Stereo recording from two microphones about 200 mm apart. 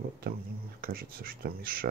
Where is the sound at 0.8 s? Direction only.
50° right (ahead or behind).